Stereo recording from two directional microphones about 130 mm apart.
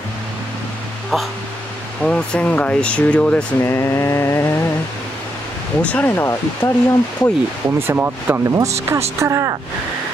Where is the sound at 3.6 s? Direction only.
20° left (ahead or behind).